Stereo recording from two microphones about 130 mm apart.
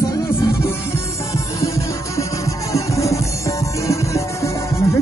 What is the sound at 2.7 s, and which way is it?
Music, 25° left (ahead or behind).